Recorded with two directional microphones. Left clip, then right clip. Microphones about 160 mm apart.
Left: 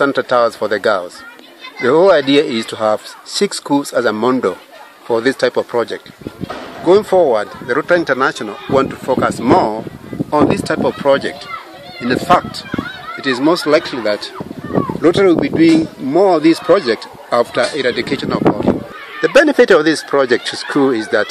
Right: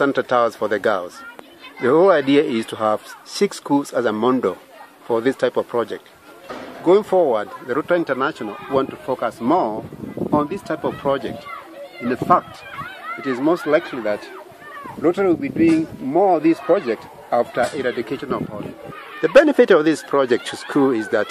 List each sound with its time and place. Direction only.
0.0 s speech: 15° right (ahead or behind); by 8.8 s 20° left (ahead or behind)
9.0 s speech: 40° left (ahead or behind)
13.2 s speech: 40° left (ahead or behind)
19.2 s speech: 5° right (ahead or behind)